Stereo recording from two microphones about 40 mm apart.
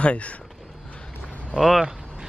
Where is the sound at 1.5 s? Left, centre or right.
Centre.